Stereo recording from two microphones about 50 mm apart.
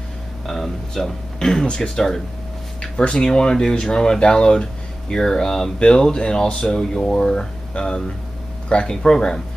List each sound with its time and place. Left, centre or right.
0.5 s speech: centre